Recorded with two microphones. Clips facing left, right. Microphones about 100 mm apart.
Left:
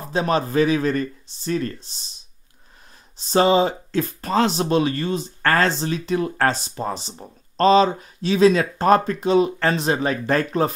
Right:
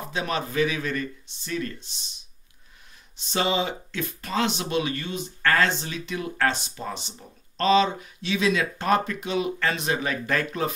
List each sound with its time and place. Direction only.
0.0 s speech: 35° left (ahead or behind)
3.2 s speech: 40° left (ahead or behind)